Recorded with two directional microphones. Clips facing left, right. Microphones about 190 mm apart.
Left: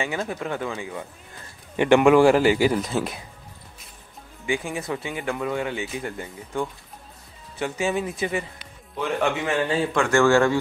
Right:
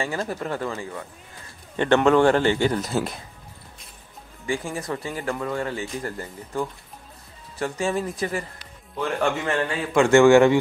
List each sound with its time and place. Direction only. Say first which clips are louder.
0.0 s a man's voice: even; centre (ahead or behind)
4.5 s speech: left 1 dB; centre (ahead or behind)
9.9 s a man's voice: right 6 dB; 20° right (ahead or behind)